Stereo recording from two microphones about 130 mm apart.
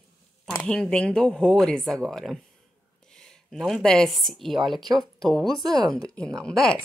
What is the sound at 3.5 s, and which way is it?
Speech, centre (ahead or behind).